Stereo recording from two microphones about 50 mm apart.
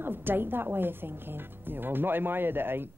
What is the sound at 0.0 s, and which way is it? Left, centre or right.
Speech, right.